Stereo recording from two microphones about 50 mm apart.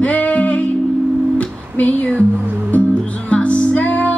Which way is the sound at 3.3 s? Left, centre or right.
Left.